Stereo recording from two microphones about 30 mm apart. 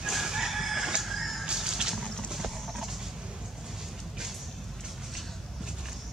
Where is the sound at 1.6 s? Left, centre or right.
Centre.